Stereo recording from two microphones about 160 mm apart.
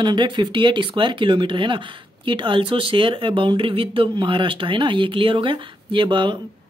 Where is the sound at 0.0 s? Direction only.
30° right (ahead or behind).